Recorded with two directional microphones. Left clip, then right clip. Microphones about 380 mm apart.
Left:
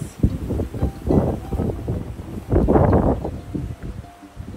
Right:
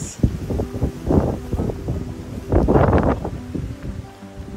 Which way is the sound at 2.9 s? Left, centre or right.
Centre.